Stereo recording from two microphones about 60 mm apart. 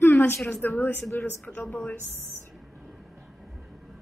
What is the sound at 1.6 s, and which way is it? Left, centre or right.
Speech, left.